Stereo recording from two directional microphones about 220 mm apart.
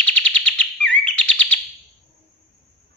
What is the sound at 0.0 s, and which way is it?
Bird, 5° left (ahead or behind).